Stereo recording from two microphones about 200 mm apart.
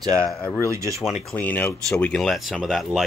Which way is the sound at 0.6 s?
15° right (ahead or behind).